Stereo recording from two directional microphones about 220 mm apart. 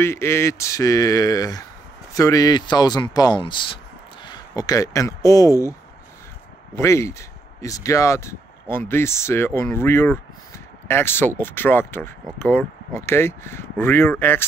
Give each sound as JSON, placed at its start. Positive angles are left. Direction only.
{"t": 0.0, "sound": "speech", "side_deg": 10}